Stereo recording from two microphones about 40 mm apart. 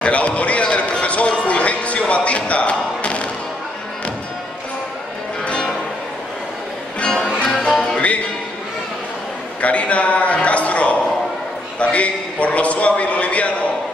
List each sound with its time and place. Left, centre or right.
0.0 s a sound: left
1.0 s music: left
5.4 s music: left
7.0 s music: left
7.2 s music: left
9.6 s a sound: left